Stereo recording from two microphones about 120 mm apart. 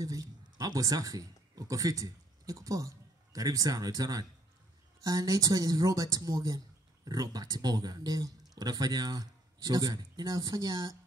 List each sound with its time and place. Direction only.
0.0 s a man's voice: 30° right (ahead or behind)